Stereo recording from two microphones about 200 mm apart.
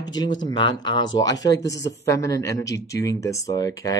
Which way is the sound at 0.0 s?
20° left (ahead or behind).